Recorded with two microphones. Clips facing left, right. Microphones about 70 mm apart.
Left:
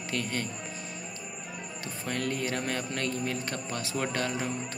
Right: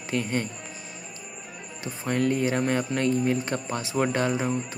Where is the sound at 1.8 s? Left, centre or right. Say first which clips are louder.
Right 8 dB; centre.